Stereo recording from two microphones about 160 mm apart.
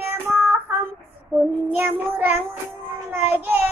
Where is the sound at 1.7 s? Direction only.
15° right (ahead or behind).